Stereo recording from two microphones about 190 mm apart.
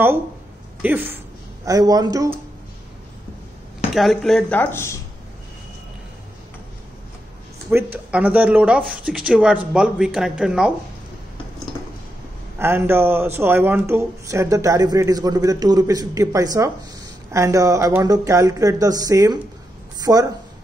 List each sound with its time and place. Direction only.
0.8 s a man's voice: 10° right (ahead or behind)
3.9 s speech: centre (ahead or behind)
7.7 s speech: 10° right (ahead or behind)
12.5 s a man's voice: 10° right (ahead or behind)